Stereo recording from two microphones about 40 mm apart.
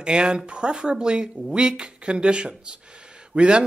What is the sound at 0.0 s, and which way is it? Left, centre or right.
Speech, right.